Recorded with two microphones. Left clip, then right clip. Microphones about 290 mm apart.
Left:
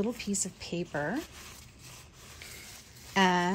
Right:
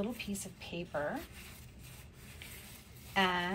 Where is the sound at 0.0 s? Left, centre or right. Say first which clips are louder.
Left 7 dB; left.